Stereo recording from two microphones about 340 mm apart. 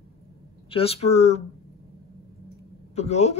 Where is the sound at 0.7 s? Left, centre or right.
Centre.